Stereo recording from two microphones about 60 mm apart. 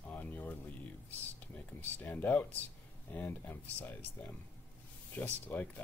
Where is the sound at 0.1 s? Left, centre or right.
Left.